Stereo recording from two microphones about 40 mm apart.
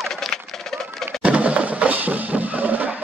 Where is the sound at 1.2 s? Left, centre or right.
Right.